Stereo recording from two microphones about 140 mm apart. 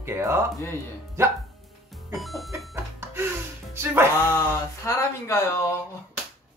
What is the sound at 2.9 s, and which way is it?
Gasp, 15° right (ahead or behind).